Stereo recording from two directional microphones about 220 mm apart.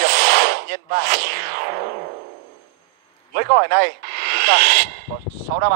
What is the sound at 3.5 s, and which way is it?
Speech, 45° right (ahead or behind).